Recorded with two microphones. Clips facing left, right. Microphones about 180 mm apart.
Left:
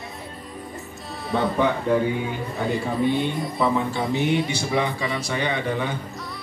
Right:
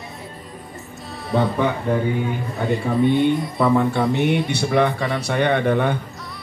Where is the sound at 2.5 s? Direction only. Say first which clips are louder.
Right 2 dB; centre (ahead or behind).